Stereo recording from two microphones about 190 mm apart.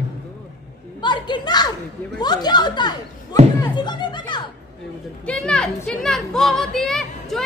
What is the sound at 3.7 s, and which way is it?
Music, 25° left (ahead or behind).